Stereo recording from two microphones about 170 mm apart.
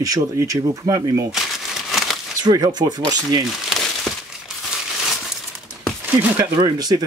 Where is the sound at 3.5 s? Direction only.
Centre (ahead or behind).